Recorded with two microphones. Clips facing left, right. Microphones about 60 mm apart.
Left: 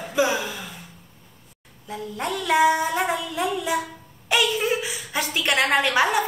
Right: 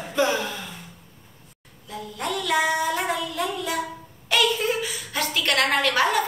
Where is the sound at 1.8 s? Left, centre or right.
Left.